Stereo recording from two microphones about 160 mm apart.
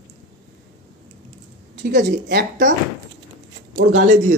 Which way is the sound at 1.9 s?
90° right.